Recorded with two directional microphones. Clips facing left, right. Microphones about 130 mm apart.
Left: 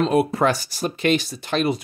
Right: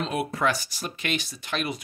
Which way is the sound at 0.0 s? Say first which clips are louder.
Left 8 dB; 35° left (ahead or behind).